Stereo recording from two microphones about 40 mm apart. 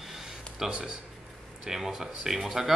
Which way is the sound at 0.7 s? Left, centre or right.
Right.